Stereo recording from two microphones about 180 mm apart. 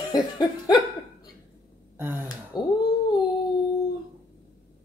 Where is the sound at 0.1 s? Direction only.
20° left (ahead or behind).